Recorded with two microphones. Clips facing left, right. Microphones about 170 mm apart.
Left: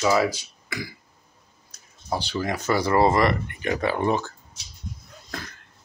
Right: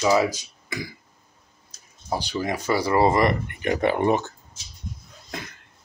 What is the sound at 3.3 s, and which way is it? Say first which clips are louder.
Speech: right 1 dB; 40° right (ahead or behind).